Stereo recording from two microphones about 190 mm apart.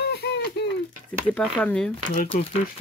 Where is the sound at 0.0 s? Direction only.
60° left (ahead or behind).